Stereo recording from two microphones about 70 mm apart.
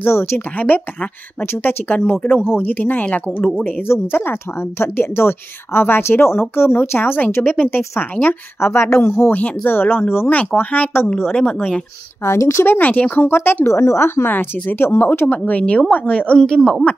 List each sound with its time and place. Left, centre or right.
0.0 s a woman's voice: left
3.8 s a woman's voice: left
9.3 s speech: left
12.3 s speech: left
12.6 s a woman's voice: left; by 16.8 s centre